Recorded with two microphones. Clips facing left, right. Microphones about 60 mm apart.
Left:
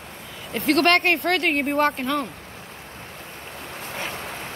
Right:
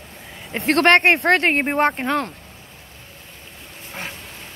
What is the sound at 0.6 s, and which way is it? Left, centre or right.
Speech, right.